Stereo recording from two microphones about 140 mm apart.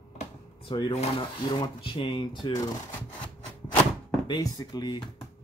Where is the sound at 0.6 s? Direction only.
40° left (ahead or behind).